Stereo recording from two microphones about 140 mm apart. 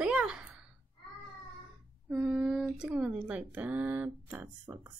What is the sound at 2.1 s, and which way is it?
Speech, 5° right (ahead or behind).